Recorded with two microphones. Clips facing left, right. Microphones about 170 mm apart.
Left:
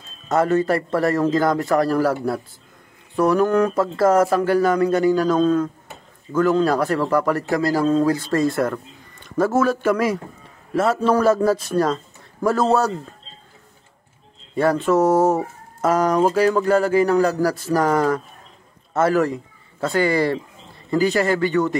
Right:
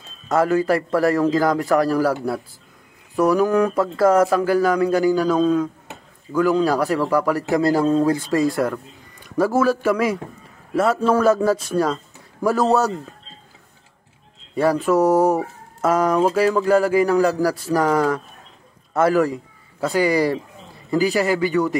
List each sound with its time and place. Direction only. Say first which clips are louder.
0.3 s speech: even; 5° right (ahead or behind)
7.4 s speech: right 2 dB; 15° right (ahead or behind)
8.5 s speech: even; centre (ahead or behind)
11.9 s a sound: left 2 dB; 5° right (ahead or behind)
14.5 s a man's voice: even; 5° right (ahead or behind)